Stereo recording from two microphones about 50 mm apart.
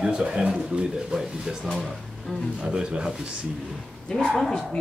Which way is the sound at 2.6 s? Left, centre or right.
Centre.